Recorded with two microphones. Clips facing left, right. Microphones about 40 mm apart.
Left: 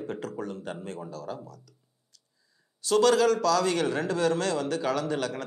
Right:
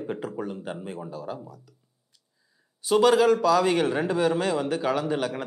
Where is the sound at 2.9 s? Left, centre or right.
Centre.